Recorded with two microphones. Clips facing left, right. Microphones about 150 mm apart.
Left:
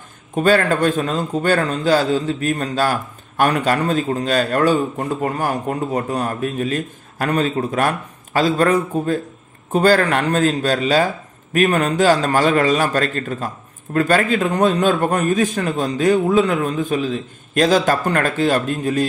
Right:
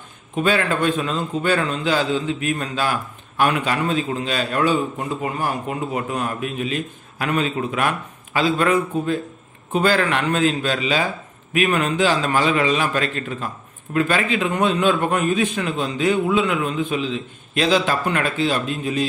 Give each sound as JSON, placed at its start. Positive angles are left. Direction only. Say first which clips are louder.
{"t": 0.4, "sound": "a man's voice", "louder": "left 4 dB", "side_deg": 40}